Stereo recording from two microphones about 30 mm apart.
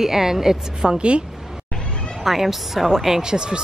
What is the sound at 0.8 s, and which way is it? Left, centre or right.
Speech, right.